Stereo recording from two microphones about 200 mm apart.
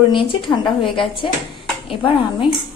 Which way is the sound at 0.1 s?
25° left (ahead or behind).